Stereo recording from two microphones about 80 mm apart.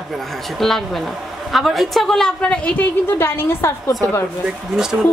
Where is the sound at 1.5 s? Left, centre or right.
Centre.